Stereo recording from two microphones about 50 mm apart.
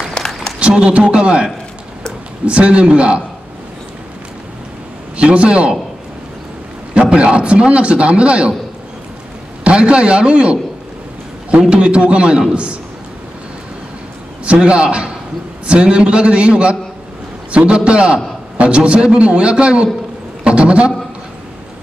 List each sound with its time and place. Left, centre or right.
0.6 s a man's voice: right
5.1 s a man's voice: right
6.9 s a man's voice: right
9.7 s a man's voice: centre
11.7 s a man's voice: right
14.4 s a man's voice: right